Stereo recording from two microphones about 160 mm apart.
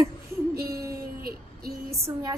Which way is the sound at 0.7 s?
20° right (ahead or behind).